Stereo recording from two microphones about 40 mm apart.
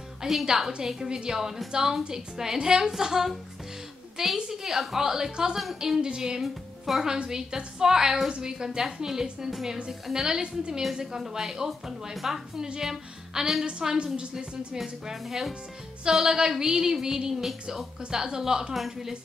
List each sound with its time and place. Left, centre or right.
0.2 s speech: centre
4.4 s a woman's voice: centre
13.7 s a woman's voice: right
14.8 s a woman's voice: centre